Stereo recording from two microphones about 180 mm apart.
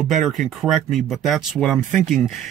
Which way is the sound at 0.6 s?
Centre (ahead or behind).